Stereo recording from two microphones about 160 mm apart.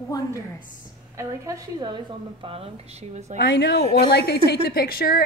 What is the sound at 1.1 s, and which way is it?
Speech, 20° right (ahead or behind).